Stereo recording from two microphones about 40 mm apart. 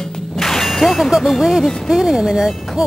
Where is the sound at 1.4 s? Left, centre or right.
Centre.